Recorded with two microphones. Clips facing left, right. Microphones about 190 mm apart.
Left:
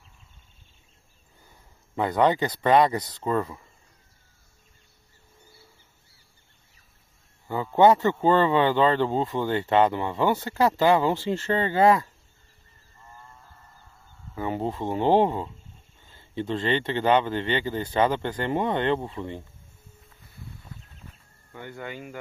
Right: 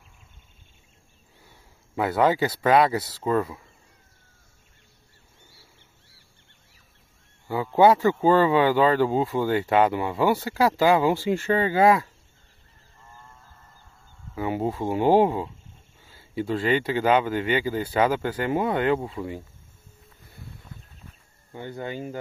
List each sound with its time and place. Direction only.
2.0 s speech: 5° right (ahead or behind)
7.4 s speech: 10° right (ahead or behind)
14.3 s speech: 10° right (ahead or behind)
21.5 s speech: 30° right (ahead or behind)